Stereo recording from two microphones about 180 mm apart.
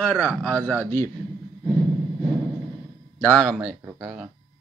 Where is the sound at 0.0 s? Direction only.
10° left (ahead or behind).